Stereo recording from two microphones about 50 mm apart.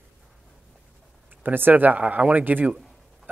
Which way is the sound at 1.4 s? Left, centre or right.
Right.